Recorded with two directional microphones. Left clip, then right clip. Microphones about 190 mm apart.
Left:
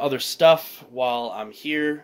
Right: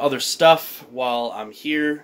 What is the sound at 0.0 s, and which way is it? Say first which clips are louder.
Speech: right 2 dB; 25° left (ahead or behind).